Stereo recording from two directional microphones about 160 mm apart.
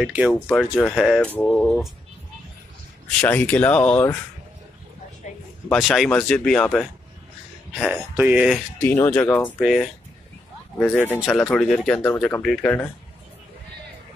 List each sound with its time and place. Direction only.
0.0 s speech: 5° right (ahead or behind)
3.2 s speech: 10° left (ahead or behind)
5.7 s speech: centre (ahead or behind)
8.8 s speech: 15° left (ahead or behind)
9.6 s speech: 5° right (ahead or behind)
10.8 s speech: 10° left (ahead or behind)